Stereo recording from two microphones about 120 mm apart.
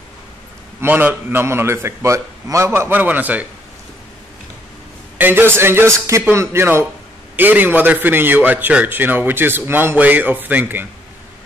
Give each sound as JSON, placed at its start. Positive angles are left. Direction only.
{"t": 0.7, "sound": "a man's voice", "side_deg": -15}
{"t": 5.1, "sound": "a man's voice", "side_deg": -15}